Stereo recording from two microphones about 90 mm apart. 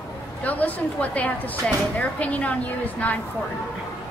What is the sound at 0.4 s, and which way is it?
A woman's voice, 20° left (ahead or behind).